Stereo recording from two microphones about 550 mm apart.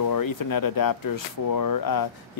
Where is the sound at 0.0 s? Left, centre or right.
Left.